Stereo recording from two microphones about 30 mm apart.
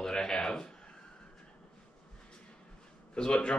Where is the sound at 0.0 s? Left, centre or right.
Centre.